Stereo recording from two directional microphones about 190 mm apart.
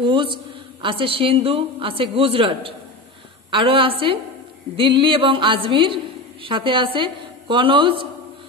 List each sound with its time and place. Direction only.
0.0 s a woman's voice: 25° right (ahead or behind)